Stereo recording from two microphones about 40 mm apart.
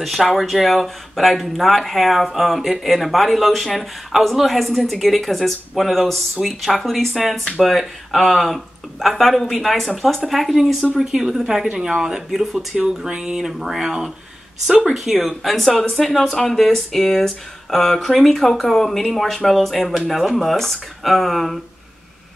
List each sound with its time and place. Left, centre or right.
0.0 s speech: centre
12.7 s speech: centre
14.7 s speech: centre
15.0 s speech: centre
20.3 s speech: centre